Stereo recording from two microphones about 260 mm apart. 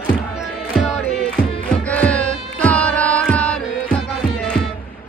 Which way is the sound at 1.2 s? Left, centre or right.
Centre.